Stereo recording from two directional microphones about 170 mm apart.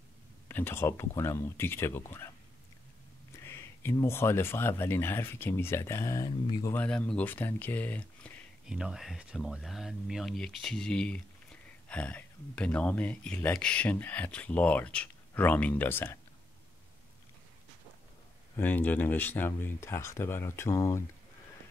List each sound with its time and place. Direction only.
0.5 s speech: 10° left (ahead or behind)
3.4 s speech: 15° left (ahead or behind)
6.7 s speech: 10° left (ahead or behind)
8.6 s speech: 5° right (ahead or behind); by 16.2 s 10° left (ahead or behind)
18.6 s speech: 10° left (ahead or behind)